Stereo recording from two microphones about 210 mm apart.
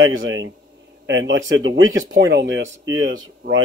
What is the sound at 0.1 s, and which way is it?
Speech, 65° right (ahead or behind).